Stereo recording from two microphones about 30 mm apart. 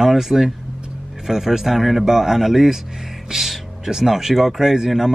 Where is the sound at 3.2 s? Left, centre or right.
Centre.